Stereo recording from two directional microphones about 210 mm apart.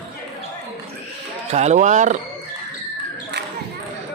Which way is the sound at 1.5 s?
35° right (ahead or behind).